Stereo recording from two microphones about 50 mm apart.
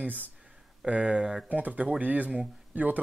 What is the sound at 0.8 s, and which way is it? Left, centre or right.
Speech, right.